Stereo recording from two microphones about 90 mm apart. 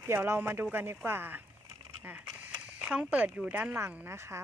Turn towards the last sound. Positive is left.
turn(degrees=-30)  # may be behind; listen again after turning